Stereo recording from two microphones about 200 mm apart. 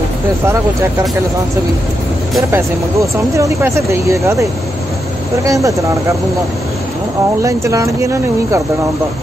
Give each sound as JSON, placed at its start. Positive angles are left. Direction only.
{"t": 2.5, "sound": "speech", "side_deg": -15}
{"t": 7.4, "sound": "speech", "side_deg": -15}